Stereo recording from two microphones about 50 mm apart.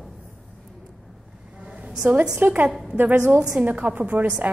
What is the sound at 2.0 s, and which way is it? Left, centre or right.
Speech, centre.